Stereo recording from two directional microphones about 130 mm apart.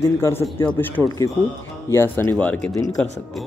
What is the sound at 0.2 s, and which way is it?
Speech, 20° left (ahead or behind).